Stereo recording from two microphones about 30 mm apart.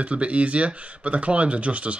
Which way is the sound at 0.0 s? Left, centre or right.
Right.